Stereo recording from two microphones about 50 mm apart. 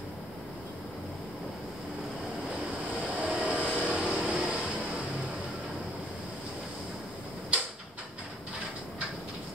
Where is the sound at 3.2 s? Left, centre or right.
Right.